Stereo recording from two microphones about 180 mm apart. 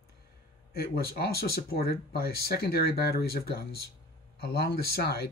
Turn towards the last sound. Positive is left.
turn(degrees=60)  # may be behind; listen again after turning